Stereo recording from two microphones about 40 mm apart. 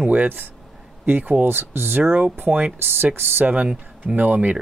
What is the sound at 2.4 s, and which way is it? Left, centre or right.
Speech, right.